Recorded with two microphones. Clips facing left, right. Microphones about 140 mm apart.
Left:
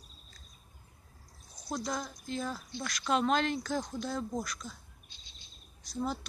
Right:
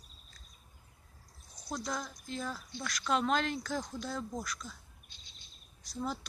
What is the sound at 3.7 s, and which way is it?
Speech, 15° left (ahead or behind).